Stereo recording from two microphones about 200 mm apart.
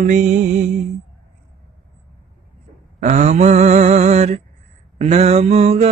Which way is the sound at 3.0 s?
35° right (ahead or behind).